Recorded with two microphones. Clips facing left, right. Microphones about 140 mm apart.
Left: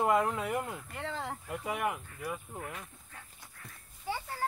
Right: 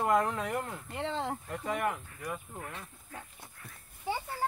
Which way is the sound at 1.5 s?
10° left (ahead or behind).